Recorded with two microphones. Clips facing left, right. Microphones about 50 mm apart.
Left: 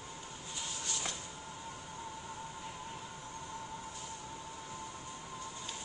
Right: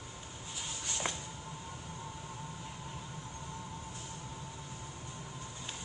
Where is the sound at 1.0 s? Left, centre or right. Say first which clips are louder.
Right 7 dB; right.